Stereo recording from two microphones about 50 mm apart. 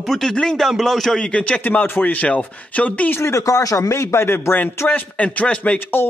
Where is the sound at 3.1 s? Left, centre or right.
Left.